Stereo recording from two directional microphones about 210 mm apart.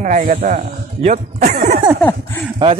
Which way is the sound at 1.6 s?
30° right (ahead or behind).